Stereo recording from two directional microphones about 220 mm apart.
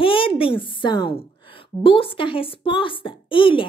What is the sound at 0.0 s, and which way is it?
A woman's voice, 25° left (ahead or behind).